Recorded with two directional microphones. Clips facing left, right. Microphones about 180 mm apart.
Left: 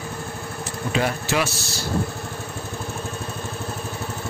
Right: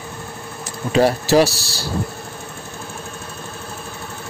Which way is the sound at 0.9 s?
35° right (ahead or behind).